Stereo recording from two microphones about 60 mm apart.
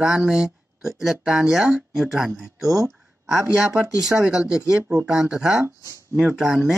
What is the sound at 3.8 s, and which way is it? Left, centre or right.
Speech, centre.